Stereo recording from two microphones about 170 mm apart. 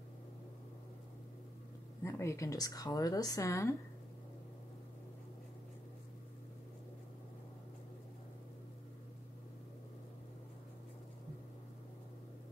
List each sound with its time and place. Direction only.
2.0 s speech: 15° left (ahead or behind)